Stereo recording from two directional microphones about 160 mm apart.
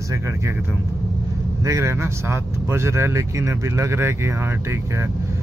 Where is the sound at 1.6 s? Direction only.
20° right (ahead or behind).